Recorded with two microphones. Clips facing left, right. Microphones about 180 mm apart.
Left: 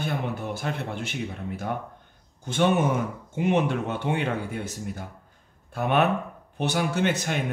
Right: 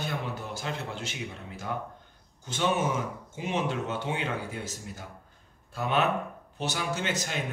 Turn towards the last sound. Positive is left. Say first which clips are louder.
# left 6 dB
turn(degrees=60)  # may be behind; listen again after turning